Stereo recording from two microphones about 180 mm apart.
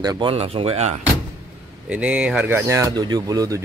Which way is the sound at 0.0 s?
25° right (ahead or behind).